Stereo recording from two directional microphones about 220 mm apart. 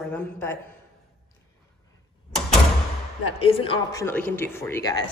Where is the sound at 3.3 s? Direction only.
25° left (ahead or behind).